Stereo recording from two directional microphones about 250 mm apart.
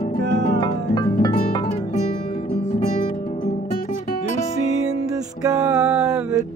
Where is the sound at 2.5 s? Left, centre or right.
Left.